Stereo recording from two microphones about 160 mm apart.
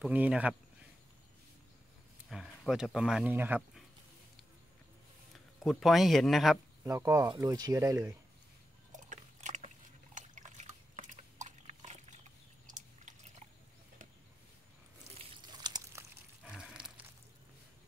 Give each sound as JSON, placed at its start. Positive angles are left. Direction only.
{"t": 0.0, "sound": "speech", "side_deg": -5}
{"t": 2.2, "sound": "speech", "side_deg": 0}
{"t": 5.6, "sound": "speech", "side_deg": 0}
{"t": 6.8, "sound": "speech", "side_deg": -20}
{"t": 8.9, "sound": "a sound", "side_deg": -50}
{"t": 15.4, "sound": "crumpling", "side_deg": -25}
{"t": 16.4, "sound": "a sound", "side_deg": -5}